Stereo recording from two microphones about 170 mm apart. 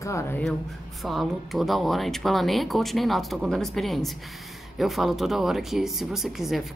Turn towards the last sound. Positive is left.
turn(degrees=0)  # may be behind; listen again after turning